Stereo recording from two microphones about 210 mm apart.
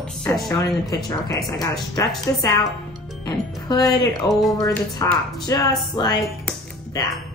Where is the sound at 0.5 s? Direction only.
15° left (ahead or behind).